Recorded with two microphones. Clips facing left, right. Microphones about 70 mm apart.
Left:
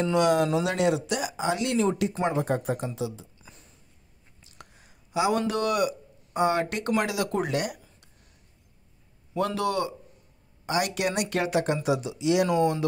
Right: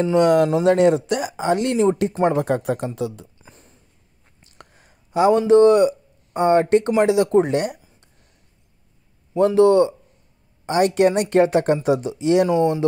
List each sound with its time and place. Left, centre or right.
0.0 s speech: right
2.4 s speech: right
3.3 s a sound: right
5.5 s speech: right
9.6 s speech: right
12.4 s speech: right